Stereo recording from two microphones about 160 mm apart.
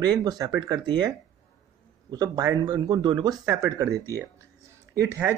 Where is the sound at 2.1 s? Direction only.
25° right (ahead or behind).